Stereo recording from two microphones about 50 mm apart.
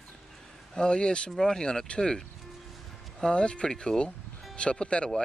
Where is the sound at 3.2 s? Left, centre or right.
Left.